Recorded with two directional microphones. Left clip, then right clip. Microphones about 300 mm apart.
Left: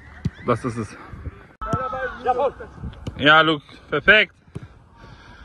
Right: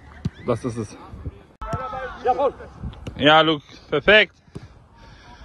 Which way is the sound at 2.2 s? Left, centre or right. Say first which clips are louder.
Right 1 dB; right.